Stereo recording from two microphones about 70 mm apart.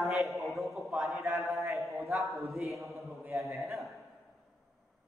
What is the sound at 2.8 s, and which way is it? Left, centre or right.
Mantra, right.